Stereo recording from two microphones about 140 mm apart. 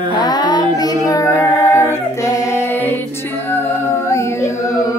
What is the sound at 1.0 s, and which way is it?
Female singing, 20° left (ahead or behind).